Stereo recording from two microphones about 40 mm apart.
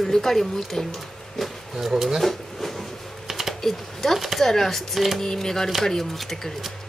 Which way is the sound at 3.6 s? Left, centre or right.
Centre.